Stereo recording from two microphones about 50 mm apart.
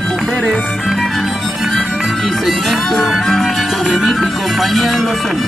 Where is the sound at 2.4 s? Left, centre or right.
Centre.